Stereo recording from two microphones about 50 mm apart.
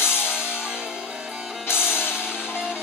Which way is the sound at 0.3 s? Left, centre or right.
Centre.